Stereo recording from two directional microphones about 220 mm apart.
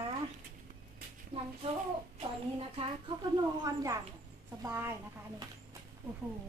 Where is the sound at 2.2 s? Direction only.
25° right (ahead or behind).